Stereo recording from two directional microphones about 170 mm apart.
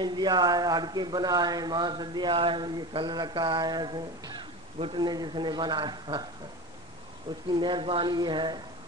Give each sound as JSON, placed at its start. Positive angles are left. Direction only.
{"t": 0.0, "sound": "speech", "side_deg": -25}
{"t": 7.5, "sound": "speech", "side_deg": -30}